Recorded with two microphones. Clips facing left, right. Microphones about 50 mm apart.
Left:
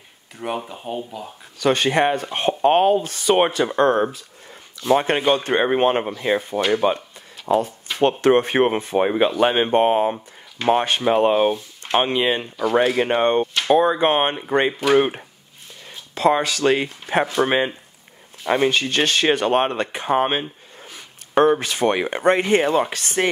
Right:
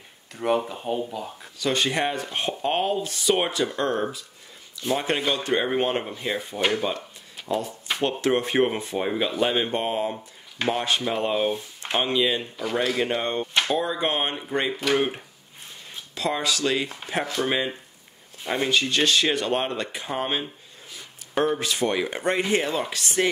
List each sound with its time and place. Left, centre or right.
0.4 s speech: centre
1.6 s speech: left
16.2 s speech: left